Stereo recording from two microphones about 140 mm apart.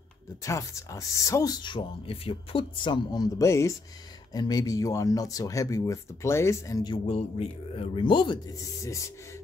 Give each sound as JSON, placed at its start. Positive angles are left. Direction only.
{"t": 0.4, "sound": "speech", "side_deg": 25}
{"t": 6.8, "sound": "speech", "side_deg": 35}
{"t": 7.2, "sound": "speech", "side_deg": 45}